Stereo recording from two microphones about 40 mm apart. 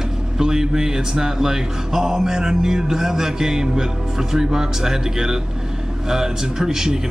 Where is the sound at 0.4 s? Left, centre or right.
Centre.